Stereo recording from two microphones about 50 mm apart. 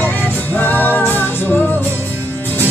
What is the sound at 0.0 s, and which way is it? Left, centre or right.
Music, left.